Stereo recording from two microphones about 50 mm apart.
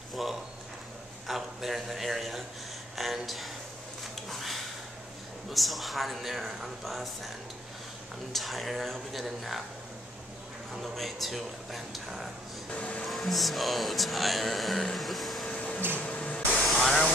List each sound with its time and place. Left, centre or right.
0.1 s a sound: centre
5.5 s speech: centre
8.3 s speech: centre
10.7 s speech: centre
12.7 s speech: left
13.1 s speech: centre
15.4 s printer: left
16.0 s a sound: left
16.6 s a sound: centre